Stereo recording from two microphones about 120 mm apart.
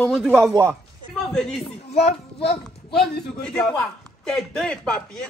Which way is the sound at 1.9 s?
60° left (ahead or behind).